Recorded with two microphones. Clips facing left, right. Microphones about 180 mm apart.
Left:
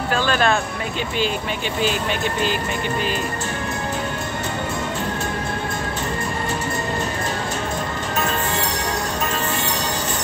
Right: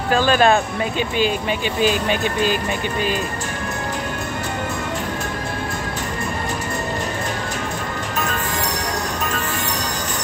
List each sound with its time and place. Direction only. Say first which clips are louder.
0.3 s speech: right 5 dB; 15° right (ahead or behind)